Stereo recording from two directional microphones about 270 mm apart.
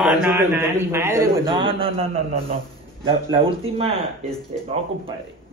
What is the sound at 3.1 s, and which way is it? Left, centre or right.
Speech, centre.